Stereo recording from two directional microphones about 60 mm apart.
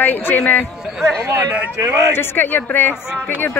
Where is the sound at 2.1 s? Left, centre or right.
Left.